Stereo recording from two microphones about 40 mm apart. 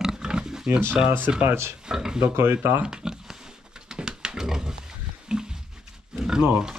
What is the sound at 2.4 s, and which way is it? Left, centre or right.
Speech, right.